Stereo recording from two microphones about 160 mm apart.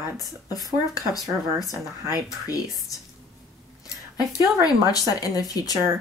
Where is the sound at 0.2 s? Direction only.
25° left (ahead or behind).